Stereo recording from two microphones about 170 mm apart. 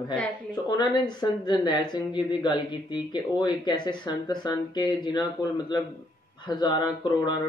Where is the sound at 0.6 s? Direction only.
25° left (ahead or behind).